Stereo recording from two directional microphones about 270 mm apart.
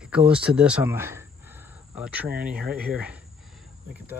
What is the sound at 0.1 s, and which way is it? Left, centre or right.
Speech, centre.